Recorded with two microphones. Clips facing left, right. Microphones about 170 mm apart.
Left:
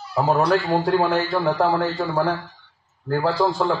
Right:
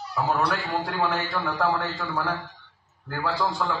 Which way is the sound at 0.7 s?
35° left (ahead or behind).